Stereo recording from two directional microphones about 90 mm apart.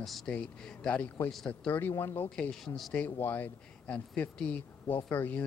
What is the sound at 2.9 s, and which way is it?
Speech, 20° left (ahead or behind).